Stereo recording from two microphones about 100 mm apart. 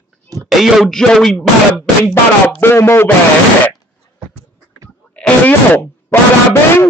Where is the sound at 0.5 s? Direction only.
Centre (ahead or behind).